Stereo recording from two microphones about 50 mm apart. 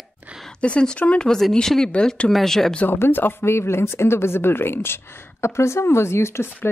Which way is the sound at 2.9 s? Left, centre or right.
Left.